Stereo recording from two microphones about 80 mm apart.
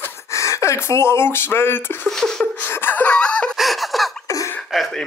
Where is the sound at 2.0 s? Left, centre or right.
Centre.